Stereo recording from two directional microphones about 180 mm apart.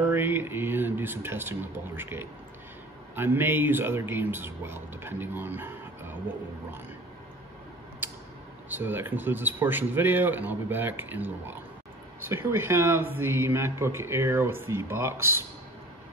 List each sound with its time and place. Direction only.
0.1 s speech: 10° right (ahead or behind)
8.6 s speech: 10° right (ahead or behind)